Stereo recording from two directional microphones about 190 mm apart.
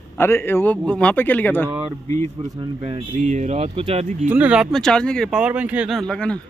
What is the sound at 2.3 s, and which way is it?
Speech, 25° right (ahead or behind).